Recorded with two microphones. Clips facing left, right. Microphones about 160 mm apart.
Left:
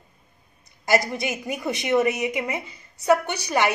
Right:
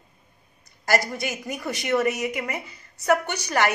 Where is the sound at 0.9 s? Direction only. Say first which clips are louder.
Left 2 dB; 20° left (ahead or behind).